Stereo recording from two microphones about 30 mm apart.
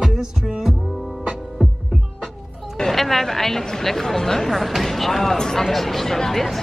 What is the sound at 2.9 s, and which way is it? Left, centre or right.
Speech, centre.